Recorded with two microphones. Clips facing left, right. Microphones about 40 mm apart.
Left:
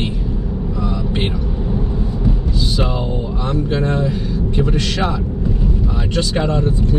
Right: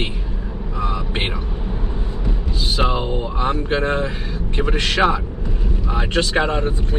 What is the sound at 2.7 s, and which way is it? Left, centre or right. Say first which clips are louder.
Speech: right 4 dB; right.